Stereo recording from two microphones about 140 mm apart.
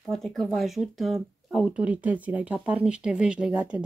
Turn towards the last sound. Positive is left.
turn(degrees=-10)  # may be behind; listen again after turning